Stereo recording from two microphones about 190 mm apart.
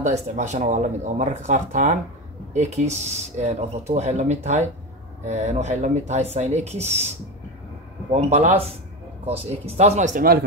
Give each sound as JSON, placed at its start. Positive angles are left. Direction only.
{"t": 0.0, "sound": "speech", "side_deg": -40}
{"t": 8.1, "sound": "speech", "side_deg": -35}